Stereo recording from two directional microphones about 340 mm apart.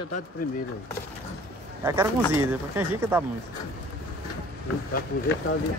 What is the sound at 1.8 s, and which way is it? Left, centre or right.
Speech, centre.